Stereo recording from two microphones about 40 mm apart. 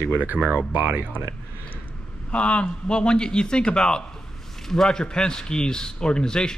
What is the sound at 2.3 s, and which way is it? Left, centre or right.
A man's voice, left.